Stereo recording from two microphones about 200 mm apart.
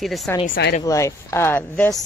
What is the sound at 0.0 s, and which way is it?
Speech, centre (ahead or behind).